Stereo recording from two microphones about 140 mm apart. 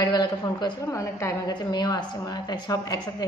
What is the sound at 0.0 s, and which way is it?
A woman's voice, 30° left (ahead or behind).